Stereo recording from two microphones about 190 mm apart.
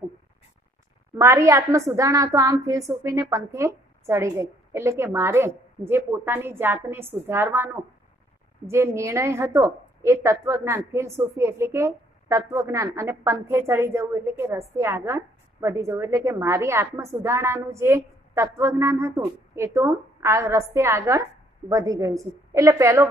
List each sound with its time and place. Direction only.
1.1 s a woman's voice: 15° right (ahead or behind)